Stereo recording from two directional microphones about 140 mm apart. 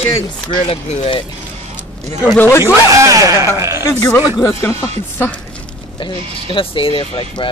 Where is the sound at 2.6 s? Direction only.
20° right (ahead or behind).